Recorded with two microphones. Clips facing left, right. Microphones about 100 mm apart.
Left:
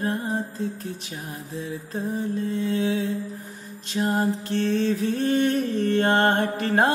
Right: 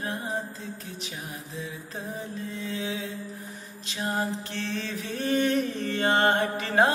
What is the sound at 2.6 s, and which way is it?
Mantra, 45° left (ahead or behind).